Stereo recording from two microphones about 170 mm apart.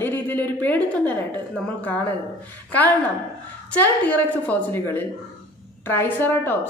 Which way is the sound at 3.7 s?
10° left (ahead or behind).